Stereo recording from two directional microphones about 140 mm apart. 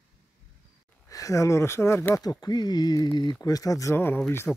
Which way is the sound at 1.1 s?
25° left (ahead or behind).